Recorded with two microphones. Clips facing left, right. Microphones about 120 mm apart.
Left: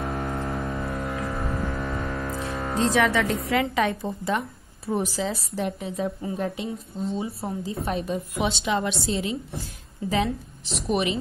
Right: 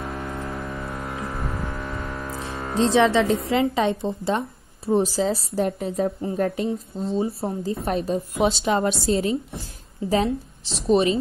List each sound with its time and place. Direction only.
2.8 s a woman's voice: 25° right (ahead or behind); by 6.7 s 45° right (ahead or behind)
7.0 s a woman's voice: 30° right (ahead or behind)